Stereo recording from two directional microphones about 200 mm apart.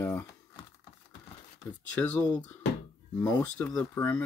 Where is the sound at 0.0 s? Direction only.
15° left (ahead or behind).